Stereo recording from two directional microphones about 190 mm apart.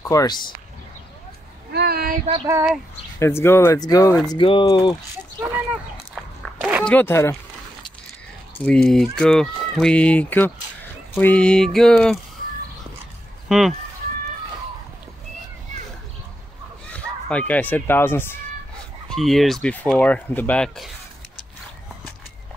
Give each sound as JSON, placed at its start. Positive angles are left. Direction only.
{"t": 0.0, "sound": "speech", "side_deg": 15}
{"t": 1.7, "sound": "a sound", "side_deg": -55}
{"t": 2.4, "sound": "speech", "side_deg": -10}
{"t": 3.2, "sound": "speech", "side_deg": 15}
{"t": 5.1, "sound": "a sound", "side_deg": -10}
{"t": 6.1, "sound": "walk", "side_deg": -5}
{"t": 6.8, "sound": "speech", "side_deg": 10}
{"t": 8.6, "sound": "speech", "side_deg": 5}
{"t": 13.5, "sound": "speech", "side_deg": 0}
{"t": 16.9, "sound": "speech", "side_deg": 5}
{"t": 19.0, "sound": "speech", "side_deg": 0}